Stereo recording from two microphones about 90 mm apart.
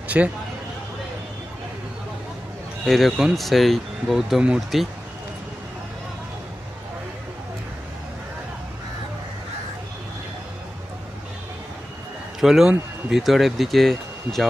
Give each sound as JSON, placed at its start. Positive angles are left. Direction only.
{"t": 0.2, "sound": "speech", "side_deg": -15}
{"t": 2.8, "sound": "speech", "side_deg": 0}
{"t": 12.4, "sound": "speech", "side_deg": -5}